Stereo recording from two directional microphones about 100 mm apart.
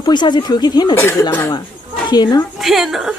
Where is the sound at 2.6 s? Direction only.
Centre (ahead or behind).